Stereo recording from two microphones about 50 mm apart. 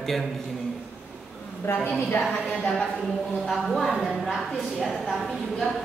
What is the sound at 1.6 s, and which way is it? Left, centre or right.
Speech, left.